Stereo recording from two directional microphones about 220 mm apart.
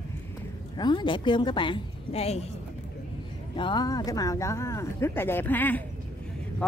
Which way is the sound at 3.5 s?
20° left (ahead or behind).